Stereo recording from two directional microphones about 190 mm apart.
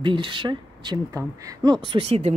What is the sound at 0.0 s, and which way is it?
Speech, 25° right (ahead or behind).